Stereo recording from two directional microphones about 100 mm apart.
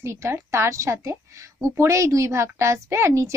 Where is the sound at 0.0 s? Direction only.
30° right (ahead or behind).